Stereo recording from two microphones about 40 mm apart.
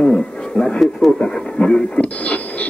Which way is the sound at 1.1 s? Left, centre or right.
Left.